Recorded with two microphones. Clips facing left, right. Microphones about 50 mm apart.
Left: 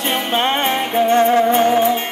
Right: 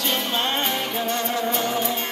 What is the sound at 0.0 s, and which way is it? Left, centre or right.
Music, left.